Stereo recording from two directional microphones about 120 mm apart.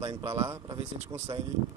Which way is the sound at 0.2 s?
25° right (ahead or behind).